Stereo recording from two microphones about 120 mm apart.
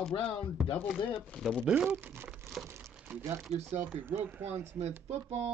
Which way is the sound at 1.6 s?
10° right (ahead or behind).